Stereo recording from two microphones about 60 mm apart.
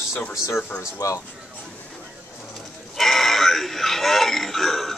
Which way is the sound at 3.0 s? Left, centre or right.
Centre.